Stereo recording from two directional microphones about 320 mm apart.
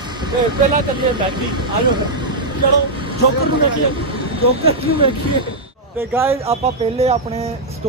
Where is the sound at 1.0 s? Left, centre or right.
Centre.